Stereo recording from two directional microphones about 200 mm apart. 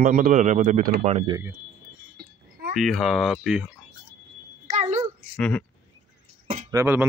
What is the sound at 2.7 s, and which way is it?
Speech, centre (ahead or behind).